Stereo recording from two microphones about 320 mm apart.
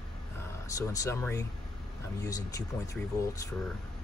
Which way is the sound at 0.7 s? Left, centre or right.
Centre.